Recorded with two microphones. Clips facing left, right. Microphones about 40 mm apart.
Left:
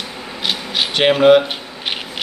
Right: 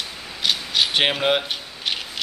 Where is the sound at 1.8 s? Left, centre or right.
Left.